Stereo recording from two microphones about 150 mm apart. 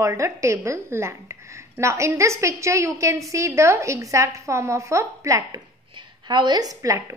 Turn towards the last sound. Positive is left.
turn(degrees=-20)  # may be behind; listen again after turning